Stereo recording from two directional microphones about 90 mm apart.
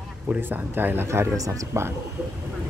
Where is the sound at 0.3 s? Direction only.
20° right (ahead or behind).